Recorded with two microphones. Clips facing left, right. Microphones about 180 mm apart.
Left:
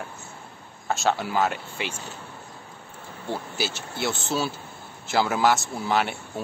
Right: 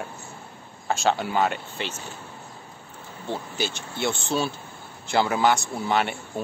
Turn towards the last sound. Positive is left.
turn(degrees=0)  # may be behind; listen again after turning